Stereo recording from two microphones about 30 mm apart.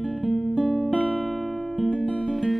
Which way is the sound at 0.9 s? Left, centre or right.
Left.